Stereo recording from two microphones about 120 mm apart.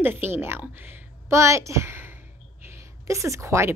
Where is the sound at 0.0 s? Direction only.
15° right (ahead or behind).